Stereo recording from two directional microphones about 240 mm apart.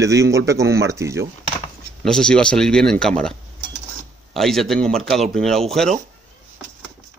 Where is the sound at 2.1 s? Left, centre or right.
Centre.